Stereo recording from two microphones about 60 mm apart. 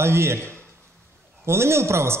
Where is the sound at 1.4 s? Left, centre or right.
Right.